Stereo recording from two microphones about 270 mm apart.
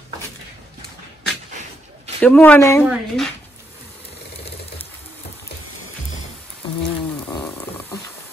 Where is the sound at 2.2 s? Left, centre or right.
Centre.